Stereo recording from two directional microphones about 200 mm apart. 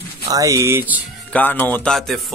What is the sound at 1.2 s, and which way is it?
Speech, 10° left (ahead or behind).